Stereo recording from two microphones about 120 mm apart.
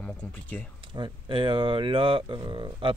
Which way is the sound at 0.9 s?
40° right (ahead or behind).